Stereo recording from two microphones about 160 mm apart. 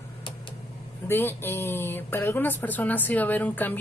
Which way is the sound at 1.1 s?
15° left (ahead or behind).